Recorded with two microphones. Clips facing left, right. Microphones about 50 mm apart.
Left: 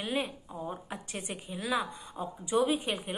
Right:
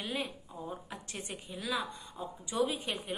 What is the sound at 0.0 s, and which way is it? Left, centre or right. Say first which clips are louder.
A woman's voice: left 4 dB; left.